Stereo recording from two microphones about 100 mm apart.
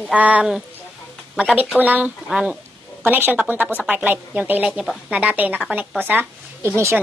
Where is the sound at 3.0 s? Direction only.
20° right (ahead or behind).